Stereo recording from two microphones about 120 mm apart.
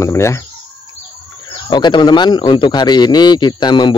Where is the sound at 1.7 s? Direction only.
40° left (ahead or behind).